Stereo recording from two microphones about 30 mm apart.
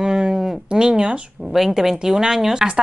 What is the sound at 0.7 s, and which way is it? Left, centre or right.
Speech, right.